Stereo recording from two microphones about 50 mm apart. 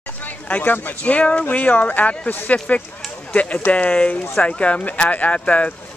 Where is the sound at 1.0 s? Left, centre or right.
Left.